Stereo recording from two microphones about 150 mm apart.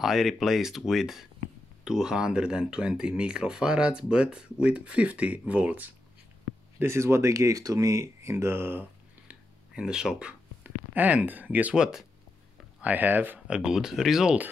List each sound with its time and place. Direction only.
0.0 s speech: centre (ahead or behind)
9.3 s a sound: 5° right (ahead or behind)
12.8 s speech: 10° right (ahead or behind)